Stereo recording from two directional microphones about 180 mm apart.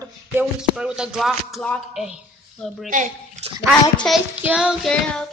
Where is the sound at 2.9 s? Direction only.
45° right (ahead or behind).